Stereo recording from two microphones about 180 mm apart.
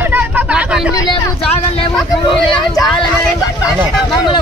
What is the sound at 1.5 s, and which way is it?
Speech, 30° left (ahead or behind).